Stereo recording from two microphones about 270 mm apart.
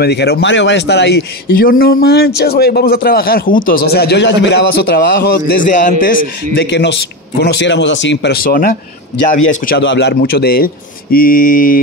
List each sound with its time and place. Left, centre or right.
0.0 s a man's voice: left